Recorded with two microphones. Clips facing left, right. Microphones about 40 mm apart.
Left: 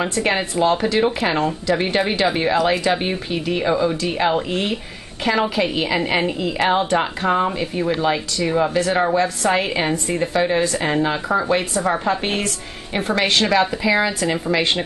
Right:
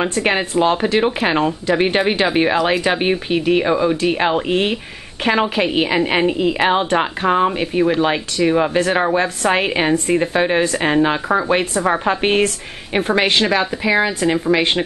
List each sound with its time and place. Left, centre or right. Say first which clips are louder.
0.3 s a woman's voice: right 2 dB; right
6.0 s a woman's voice: right 4 dB; right